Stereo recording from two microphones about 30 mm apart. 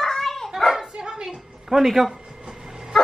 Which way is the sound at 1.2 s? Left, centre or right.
Centre.